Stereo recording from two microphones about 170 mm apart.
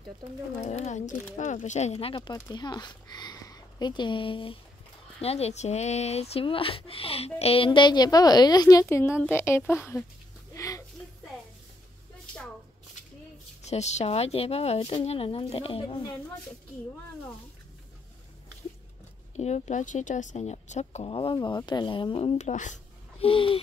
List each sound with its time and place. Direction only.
0.6 s speech: 40° left (ahead or behind); by 10.0 s 15° left (ahead or behind)
10.5 s a sound: 20° left (ahead or behind)
13.6 s speech: 40° left (ahead or behind)
19.3 s speech: 40° left (ahead or behind)